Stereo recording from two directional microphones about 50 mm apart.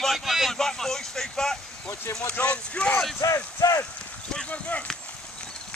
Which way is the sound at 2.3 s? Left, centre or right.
Left.